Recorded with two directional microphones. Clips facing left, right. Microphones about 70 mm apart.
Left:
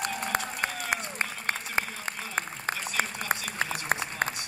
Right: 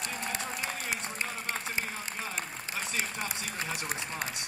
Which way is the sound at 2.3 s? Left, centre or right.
Left.